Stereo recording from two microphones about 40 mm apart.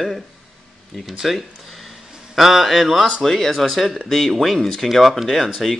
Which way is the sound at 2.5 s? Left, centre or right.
Centre.